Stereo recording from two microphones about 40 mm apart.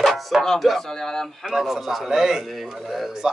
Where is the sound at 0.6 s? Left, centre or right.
Centre.